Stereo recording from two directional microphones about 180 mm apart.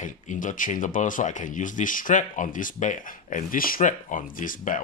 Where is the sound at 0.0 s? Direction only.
45° left (ahead or behind).